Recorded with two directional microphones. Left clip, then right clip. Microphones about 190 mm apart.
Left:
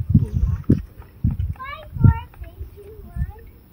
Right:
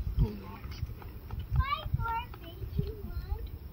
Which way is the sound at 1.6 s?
60° right (ahead or behind).